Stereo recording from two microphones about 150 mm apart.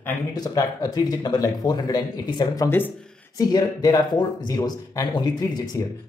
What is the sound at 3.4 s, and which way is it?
Speech, 25° left (ahead or behind).